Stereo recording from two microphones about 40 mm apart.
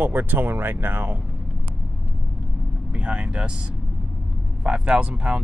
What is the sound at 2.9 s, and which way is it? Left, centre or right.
Speech, right.